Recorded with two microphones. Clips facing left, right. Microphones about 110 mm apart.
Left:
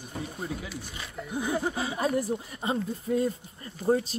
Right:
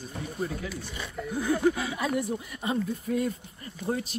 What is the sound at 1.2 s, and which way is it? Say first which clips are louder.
Speech: right 4 dB; 15° left (ahead or behind).